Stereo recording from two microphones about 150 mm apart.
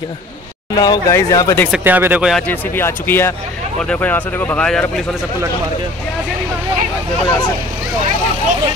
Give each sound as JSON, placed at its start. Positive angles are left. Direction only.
{"t": 0.7, "sound": "speech", "side_deg": 25}
{"t": 1.7, "sound": "speech", "side_deg": -10}
{"t": 2.3, "sound": "speech", "side_deg": 10}